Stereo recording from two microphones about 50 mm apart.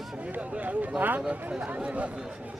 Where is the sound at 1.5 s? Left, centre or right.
Right.